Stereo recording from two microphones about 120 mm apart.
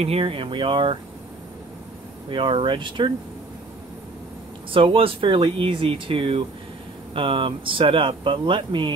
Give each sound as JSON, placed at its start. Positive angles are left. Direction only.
{"t": 0.0, "sound": "speech", "side_deg": -55}
{"t": 2.3, "sound": "speech", "side_deg": -45}
{"t": 4.7, "sound": "speech", "side_deg": -50}